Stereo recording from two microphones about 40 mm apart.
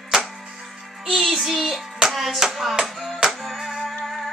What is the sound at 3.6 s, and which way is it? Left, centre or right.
Music, centre.